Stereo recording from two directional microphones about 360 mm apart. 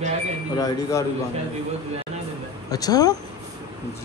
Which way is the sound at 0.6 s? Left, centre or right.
Centre.